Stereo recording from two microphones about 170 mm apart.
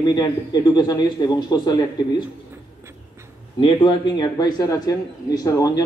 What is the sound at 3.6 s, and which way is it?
Speech, 30° left (ahead or behind).